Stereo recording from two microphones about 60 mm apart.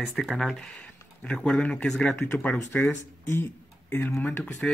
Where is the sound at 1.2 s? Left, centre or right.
Centre.